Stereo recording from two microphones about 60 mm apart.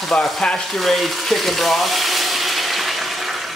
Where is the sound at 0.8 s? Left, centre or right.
Centre.